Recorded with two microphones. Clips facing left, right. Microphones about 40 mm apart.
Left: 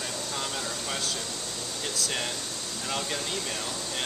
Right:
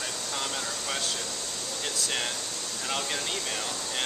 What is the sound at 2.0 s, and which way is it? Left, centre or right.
Speech, centre.